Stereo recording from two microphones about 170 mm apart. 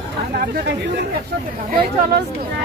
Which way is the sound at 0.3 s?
60° right (ahead or behind).